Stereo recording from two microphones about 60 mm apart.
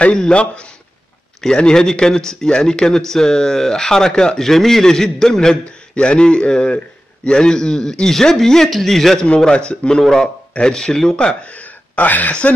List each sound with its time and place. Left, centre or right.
0.0 s a man's voice: centre